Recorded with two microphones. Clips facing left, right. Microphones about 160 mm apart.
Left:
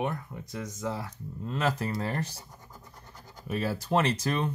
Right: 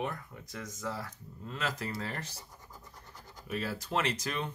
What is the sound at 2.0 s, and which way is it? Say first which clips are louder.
Speech: left 7 dB; 40° left (ahead or behind).